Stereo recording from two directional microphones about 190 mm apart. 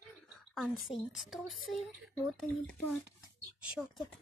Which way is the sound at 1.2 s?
Centre (ahead or behind).